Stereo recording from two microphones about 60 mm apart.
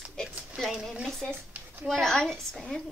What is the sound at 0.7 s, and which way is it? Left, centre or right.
A woman's voice, centre.